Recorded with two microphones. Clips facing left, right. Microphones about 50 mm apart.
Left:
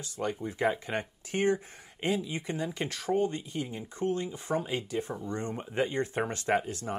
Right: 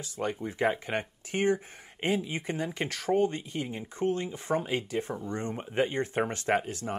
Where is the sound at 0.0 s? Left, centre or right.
Right.